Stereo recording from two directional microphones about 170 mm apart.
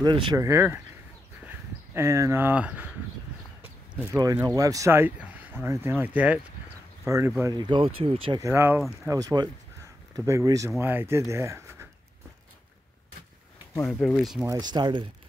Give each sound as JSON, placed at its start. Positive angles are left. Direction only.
{"t": 0.0, "sound": "speech", "side_deg": -25}
{"t": 4.2, "sound": "speech", "side_deg": -20}
{"t": 7.5, "sound": "speech", "side_deg": -25}
{"t": 8.4, "sound": "speech", "side_deg": -15}
{"t": 13.8, "sound": "speech", "side_deg": 5}
{"t": 14.4, "sound": "speech", "side_deg": -20}